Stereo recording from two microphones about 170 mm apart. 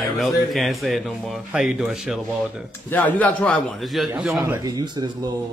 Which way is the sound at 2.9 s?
10° left (ahead or behind).